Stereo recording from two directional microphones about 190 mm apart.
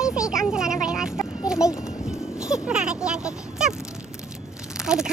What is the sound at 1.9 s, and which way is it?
Speech, 5° right (ahead or behind).